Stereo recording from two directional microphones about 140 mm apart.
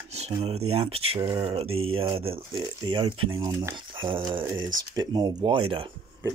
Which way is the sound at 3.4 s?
20° right (ahead or behind).